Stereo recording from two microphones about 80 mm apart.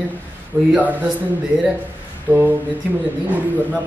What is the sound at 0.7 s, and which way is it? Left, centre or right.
Speech, right.